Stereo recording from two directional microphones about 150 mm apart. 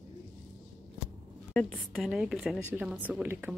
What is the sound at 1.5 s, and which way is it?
Speech, 10° left (ahead or behind).